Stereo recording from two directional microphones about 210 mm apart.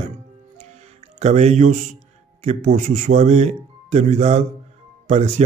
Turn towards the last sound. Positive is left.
turn(degrees=-30)  # may be behind; listen again after turning